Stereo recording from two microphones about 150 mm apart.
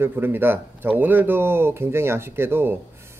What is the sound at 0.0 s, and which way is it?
Speech, 15° right (ahead or behind).